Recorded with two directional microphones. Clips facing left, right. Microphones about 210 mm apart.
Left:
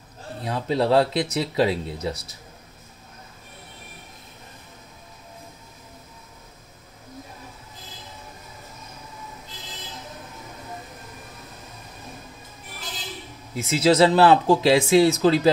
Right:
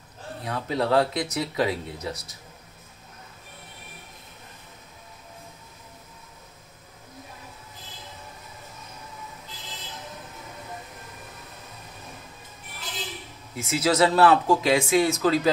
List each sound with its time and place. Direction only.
0.5 s speech: 30° left (ahead or behind)
13.6 s speech: 30° left (ahead or behind)